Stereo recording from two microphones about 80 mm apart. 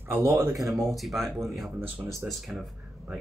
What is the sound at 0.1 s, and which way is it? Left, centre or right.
Speech, right.